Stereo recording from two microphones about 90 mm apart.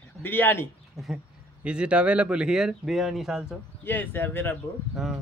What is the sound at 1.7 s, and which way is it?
Speech, 10° right (ahead or behind).